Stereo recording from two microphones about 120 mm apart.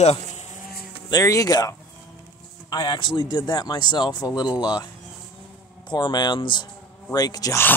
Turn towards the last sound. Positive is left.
turn(degrees=30)  # may be behind; listen again after turning